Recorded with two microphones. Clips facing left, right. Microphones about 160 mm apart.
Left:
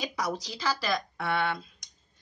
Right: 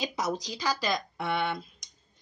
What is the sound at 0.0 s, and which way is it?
Speech, 25° right (ahead or behind).